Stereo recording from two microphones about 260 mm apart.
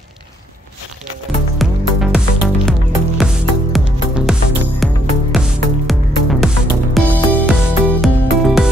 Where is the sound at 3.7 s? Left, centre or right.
Centre.